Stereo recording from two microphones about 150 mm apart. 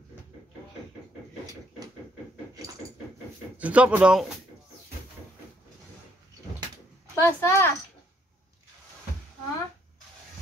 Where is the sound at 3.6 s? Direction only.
10° right (ahead or behind).